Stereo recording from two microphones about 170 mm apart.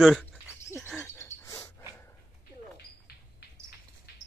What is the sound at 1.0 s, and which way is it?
Bird, 15° left (ahead or behind).